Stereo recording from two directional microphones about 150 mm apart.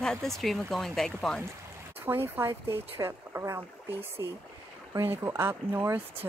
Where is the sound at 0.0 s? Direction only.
5° left (ahead or behind).